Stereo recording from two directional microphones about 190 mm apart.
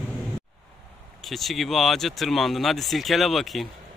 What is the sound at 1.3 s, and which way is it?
Speech, centre (ahead or behind).